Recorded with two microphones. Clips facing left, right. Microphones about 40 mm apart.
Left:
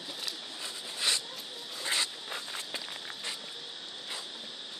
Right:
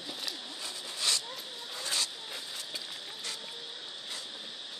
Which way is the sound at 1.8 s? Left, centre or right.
Left.